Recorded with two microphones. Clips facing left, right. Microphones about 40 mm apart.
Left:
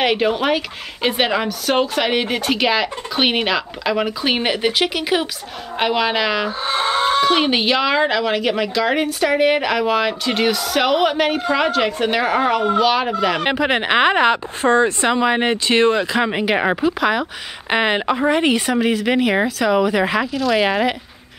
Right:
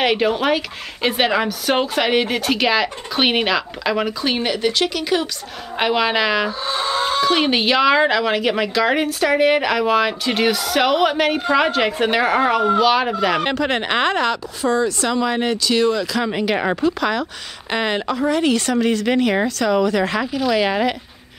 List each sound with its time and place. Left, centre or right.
0.0 s a woman's voice: centre
4.2 s speech: left
5.8 s a woman's voice: centre
6.6 s chicken: left
7.3 s a woman's voice: centre
13.4 s speech: centre
14.6 s speech: left; by 20.9 s centre